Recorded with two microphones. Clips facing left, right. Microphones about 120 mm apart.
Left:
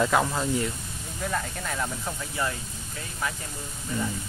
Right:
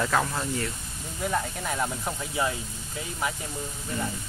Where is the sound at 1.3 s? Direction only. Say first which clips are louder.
Right 2 dB; 15° right (ahead or behind).